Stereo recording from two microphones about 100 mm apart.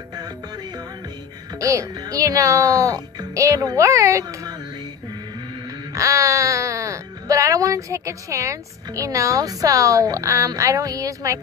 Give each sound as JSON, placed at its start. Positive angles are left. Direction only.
{"t": 1.6, "sound": "speech", "side_deg": -30}
{"t": 5.9, "sound": "speech", "side_deg": -30}